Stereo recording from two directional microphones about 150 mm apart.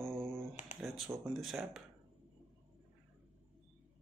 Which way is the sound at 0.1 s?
15° right (ahead or behind).